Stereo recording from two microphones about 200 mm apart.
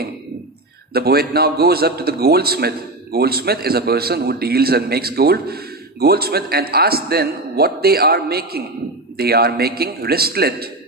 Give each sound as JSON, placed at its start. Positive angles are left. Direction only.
{"t": 0.9, "sound": "a man's voice", "side_deg": -50}